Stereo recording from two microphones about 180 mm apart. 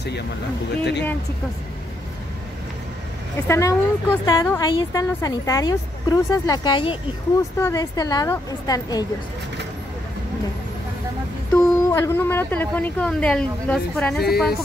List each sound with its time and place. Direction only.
3.4 s a woman's voice: 15° left (ahead or behind)
7.5 s a woman's voice: 15° left (ahead or behind)
11.5 s a woman's voice: 15° left (ahead or behind)
14.2 s a woman's voice: 60° left (ahead or behind)